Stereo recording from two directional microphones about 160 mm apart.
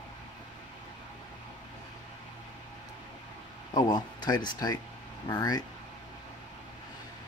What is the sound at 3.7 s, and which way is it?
Speech, 25° left (ahead or behind).